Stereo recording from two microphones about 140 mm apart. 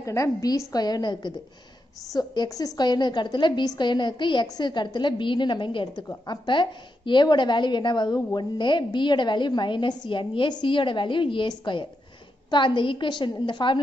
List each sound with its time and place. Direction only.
0.0 s a woman's voice: 20° left (ahead or behind)